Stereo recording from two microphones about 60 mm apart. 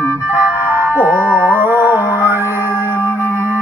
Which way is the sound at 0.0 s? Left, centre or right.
Right.